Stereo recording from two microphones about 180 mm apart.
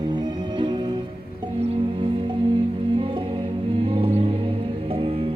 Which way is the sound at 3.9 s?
30° right (ahead or behind).